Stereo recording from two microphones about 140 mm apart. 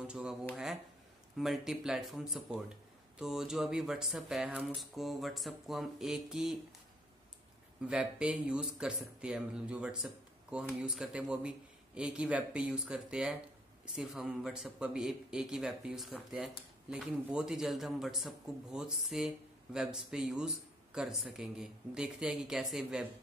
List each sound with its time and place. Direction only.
0.0 s speech: 5° right (ahead or behind)
7.8 s speech: 10° right (ahead or behind)